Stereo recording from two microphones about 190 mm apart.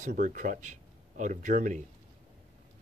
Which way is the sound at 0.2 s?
45° right (ahead or behind).